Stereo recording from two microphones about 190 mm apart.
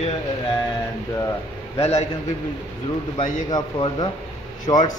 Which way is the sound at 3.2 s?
25° left (ahead or behind).